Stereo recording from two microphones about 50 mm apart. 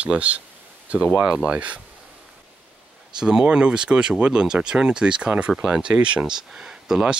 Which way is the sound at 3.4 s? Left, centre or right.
Right.